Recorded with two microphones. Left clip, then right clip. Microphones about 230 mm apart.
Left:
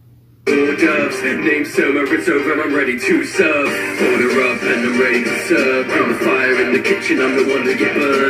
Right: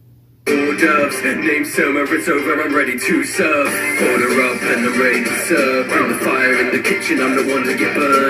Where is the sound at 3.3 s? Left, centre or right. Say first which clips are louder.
Left 1 dB; right.